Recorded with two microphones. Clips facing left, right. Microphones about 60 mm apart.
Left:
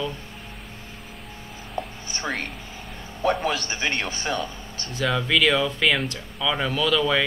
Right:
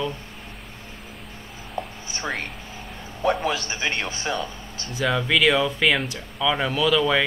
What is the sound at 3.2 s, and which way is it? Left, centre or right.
A man's voice, centre.